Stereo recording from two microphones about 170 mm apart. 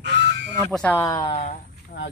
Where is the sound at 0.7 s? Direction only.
10° left (ahead or behind).